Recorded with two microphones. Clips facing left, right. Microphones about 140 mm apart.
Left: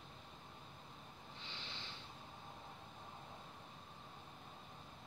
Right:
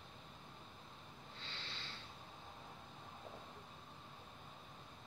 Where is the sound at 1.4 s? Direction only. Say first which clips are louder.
Even; 15° left (ahead or behind).